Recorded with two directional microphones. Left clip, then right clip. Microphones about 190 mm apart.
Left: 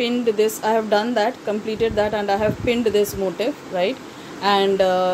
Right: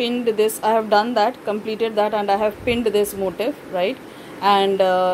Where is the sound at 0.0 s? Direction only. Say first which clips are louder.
Even; centre (ahead or behind).